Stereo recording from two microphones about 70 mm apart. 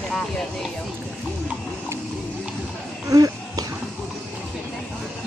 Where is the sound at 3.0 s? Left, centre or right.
Right.